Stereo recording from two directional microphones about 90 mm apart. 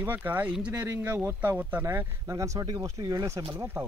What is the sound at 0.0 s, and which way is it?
Speech, 20° right (ahead or behind).